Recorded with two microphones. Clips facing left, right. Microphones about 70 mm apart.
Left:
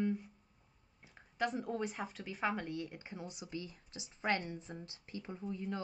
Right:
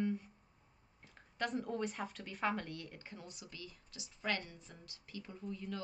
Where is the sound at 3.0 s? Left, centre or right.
Centre; by 5.8 s left.